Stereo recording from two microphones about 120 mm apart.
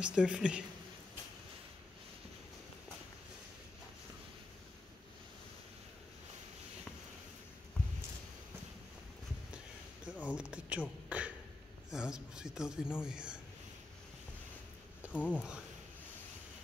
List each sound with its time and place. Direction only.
0.0 s speech: 10° right (ahead or behind)
10.2 s a sound: 10° right (ahead or behind)
13.0 s speech: 5° right (ahead or behind)
15.1 s speech: 15° left (ahead or behind)